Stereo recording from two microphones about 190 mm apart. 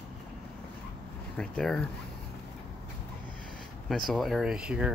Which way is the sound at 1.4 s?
5° left (ahead or behind).